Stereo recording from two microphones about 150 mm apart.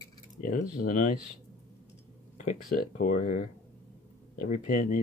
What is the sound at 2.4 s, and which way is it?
Speech, 55° left (ahead or behind).